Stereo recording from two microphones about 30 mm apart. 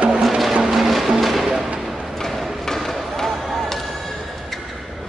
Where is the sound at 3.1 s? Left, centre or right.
Centre.